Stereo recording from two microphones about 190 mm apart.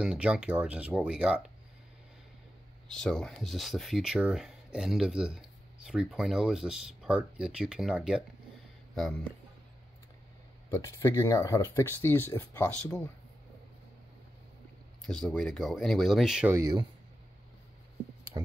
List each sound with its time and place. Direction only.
0.0 s speech: 5° right (ahead or behind)
2.9 s speech: 5° left (ahead or behind)
10.7 s speech: 15° left (ahead or behind)
15.0 s speech: 5° left (ahead or behind)
18.3 s speech: 25° right (ahead or behind)